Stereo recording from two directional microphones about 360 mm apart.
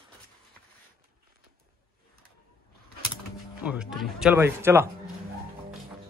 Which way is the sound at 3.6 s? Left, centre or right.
Centre.